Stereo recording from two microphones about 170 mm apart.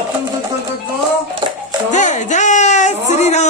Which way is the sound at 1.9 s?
45° left (ahead or behind).